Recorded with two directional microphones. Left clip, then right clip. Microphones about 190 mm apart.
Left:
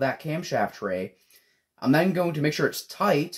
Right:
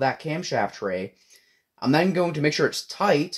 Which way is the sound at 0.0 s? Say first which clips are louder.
Right 2 dB; 30° right (ahead or behind).